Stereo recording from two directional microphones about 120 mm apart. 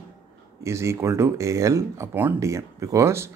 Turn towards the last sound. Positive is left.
turn(degrees=-25)  # may be behind; listen again after turning